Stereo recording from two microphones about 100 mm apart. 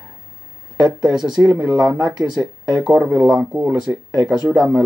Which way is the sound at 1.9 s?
40° right (ahead or behind).